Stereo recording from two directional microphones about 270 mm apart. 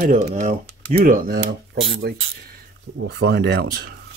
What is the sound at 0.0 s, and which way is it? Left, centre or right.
Speech, right.